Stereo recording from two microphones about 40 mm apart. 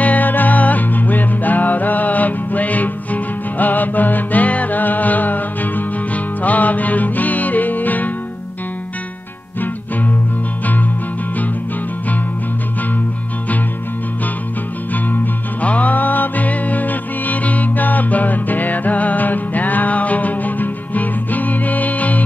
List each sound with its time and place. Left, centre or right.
0.0 s music: left
15.6 s music: left